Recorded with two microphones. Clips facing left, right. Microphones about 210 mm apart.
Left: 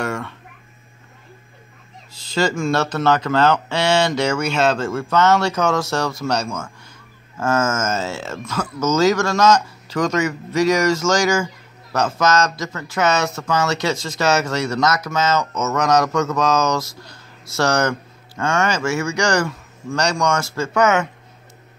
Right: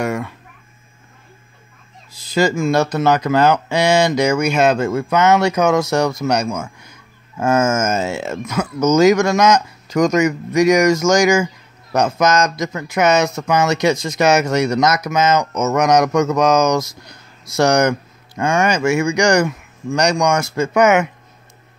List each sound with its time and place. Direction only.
0.0 s speech: 10° right (ahead or behind)
2.2 s speech: 10° right (ahead or behind)